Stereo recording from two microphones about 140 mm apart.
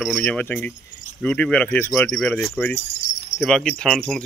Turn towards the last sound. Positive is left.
turn(degrees=5)  # may be behind; listen again after turning